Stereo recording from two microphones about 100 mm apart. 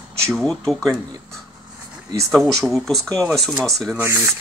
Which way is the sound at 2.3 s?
Centre (ahead or behind).